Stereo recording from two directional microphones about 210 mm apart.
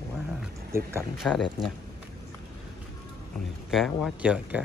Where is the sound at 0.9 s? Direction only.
Centre (ahead or behind).